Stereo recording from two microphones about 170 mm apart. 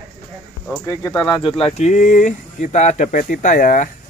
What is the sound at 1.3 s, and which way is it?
Speech, 35° left (ahead or behind).